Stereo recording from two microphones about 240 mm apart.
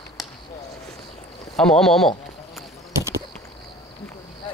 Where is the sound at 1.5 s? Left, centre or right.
Centre.